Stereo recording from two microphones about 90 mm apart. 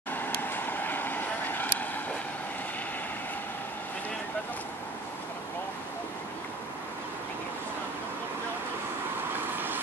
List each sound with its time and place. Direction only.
0.4 s vehicle: 20° left (ahead or behind)
9.3 s vehicle: 20° right (ahead or behind)